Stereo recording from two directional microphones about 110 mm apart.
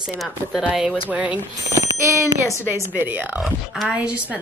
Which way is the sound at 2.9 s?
15° right (ahead or behind).